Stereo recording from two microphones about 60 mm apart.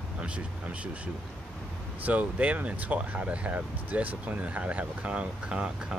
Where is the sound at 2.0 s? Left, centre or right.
Right.